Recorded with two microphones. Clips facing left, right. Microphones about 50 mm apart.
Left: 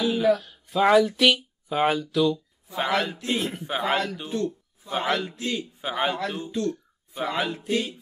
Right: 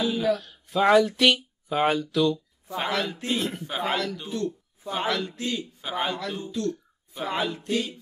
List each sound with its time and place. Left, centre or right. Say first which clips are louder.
0.0 s a sound: left 3 dB; left
0.4 s speech: left 1 dB; centre
2.8 s a man's voice: left 3 dB; left
3.3 s a man's voice: left 1 dB; centre
3.7 s a man's voice: left 3 dB; left